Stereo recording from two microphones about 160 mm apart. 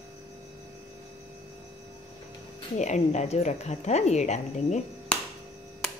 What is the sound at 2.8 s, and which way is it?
A woman's voice, 45° left (ahead or behind).